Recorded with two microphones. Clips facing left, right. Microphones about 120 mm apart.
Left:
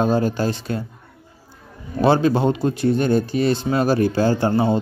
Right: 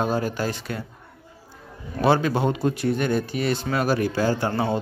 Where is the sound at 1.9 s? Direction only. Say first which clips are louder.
Left 4 dB; 30° left (ahead or behind).